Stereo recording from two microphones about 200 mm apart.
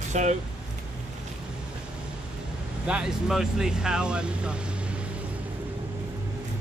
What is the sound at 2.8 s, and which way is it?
Speech, 5° right (ahead or behind).